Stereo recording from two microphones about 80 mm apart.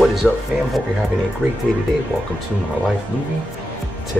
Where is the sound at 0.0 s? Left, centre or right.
Centre.